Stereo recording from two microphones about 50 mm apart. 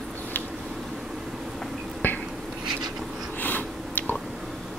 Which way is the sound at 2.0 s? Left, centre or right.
Left.